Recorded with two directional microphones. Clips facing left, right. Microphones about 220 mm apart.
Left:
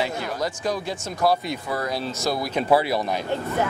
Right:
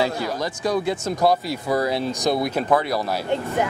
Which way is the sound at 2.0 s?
15° right (ahead or behind).